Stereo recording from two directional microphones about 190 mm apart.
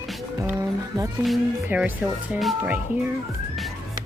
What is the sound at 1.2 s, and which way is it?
Speech, 5° right (ahead or behind).